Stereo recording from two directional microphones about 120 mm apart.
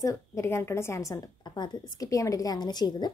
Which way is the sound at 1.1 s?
35° left (ahead or behind).